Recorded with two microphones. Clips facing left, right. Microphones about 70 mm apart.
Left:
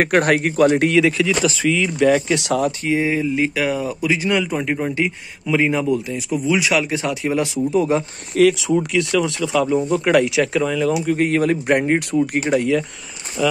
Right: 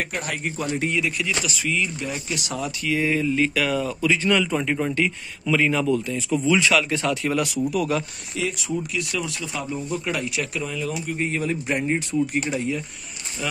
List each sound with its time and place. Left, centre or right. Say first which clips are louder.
0.0 s speech: left 12 dB; left
1.6 s speech: left 12 dB; left
2.8 s speech: left 3 dB; left
8.4 s speech: left 12 dB; left
10.9 s speech: left 9 dB; left
12.4 s speech: left 7 dB; left